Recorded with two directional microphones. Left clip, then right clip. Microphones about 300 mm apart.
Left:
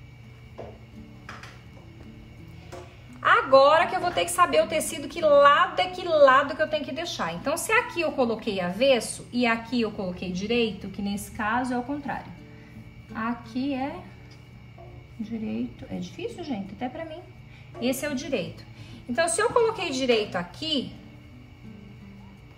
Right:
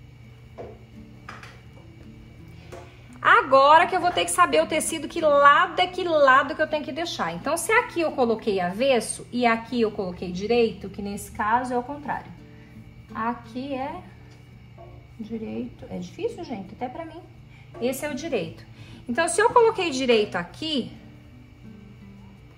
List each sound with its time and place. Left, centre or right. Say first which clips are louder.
3.2 s a woman's voice: right 1 dB; right; by 13.8 s centre
15.4 s a woman's voice: even; centre